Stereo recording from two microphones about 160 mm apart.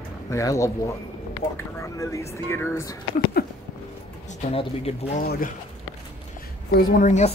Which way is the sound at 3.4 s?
80° left.